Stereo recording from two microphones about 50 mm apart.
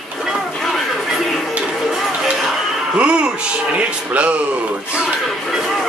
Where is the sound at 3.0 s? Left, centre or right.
Right.